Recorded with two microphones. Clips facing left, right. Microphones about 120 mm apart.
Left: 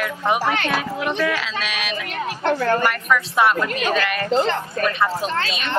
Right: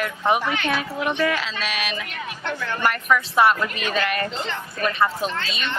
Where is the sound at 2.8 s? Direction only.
Centre (ahead or behind).